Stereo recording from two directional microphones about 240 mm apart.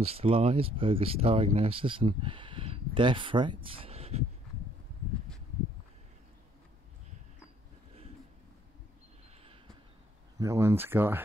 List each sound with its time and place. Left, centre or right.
0.0 s speech: right
10.4 s speech: centre